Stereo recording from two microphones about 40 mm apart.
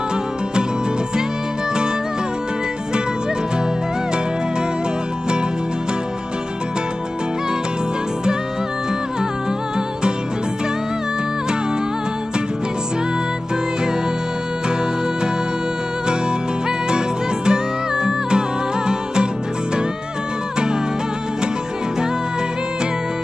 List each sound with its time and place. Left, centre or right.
16.1 s music: right